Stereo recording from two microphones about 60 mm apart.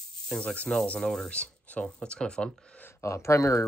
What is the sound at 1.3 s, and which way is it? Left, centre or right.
Speech, centre.